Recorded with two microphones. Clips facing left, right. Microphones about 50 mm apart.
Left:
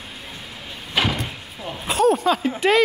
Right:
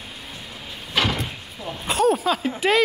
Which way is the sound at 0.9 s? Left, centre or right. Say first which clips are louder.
Left 1 dB; centre.